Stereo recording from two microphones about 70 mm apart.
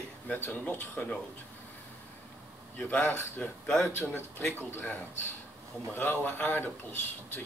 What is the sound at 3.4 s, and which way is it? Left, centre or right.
Speech, centre.